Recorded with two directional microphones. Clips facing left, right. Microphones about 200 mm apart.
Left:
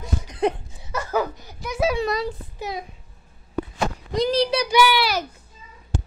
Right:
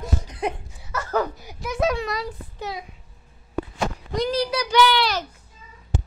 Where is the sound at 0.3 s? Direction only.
25° left (ahead or behind).